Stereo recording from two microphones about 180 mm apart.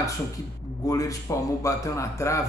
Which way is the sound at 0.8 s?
20° left (ahead or behind).